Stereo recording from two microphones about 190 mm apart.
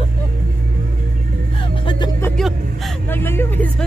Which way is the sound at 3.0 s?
10° left (ahead or behind).